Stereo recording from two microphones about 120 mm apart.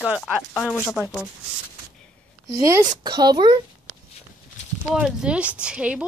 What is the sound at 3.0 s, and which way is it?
Speech, 35° right (ahead or behind).